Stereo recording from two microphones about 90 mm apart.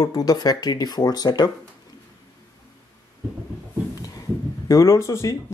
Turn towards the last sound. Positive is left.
turn(degrees=35)  # may be behind; listen again after turning